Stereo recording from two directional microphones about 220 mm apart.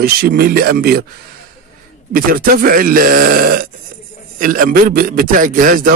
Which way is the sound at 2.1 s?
40° right (ahead or behind).